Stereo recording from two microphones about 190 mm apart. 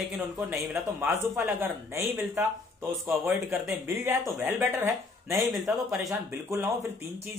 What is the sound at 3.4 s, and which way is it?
Speech, 15° right (ahead or behind).